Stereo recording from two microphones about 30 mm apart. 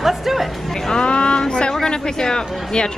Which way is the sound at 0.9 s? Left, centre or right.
Left.